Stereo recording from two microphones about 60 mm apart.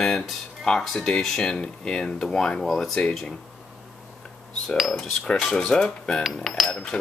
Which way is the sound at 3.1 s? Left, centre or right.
Centre.